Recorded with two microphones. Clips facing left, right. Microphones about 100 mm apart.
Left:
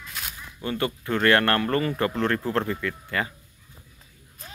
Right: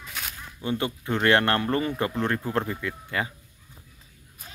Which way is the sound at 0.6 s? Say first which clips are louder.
Left 1 dB; 20° right (ahead or behind).